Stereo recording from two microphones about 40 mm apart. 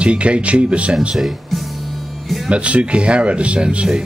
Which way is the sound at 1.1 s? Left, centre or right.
Centre.